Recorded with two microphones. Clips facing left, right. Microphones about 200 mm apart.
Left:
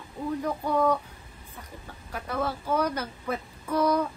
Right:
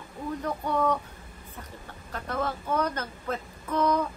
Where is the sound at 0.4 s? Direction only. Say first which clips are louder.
Left 2 dB; 10° left (ahead or behind).